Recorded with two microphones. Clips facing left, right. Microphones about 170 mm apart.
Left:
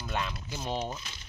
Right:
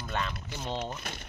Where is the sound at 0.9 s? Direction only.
55° right (ahead or behind).